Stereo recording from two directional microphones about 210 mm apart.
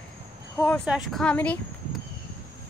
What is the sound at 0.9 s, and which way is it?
Speech, centre (ahead or behind).